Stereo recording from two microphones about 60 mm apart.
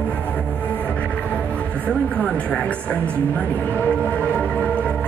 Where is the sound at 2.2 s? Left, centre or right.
Centre.